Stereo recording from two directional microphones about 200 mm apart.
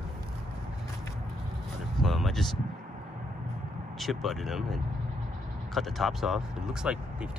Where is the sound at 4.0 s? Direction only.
Centre (ahead or behind).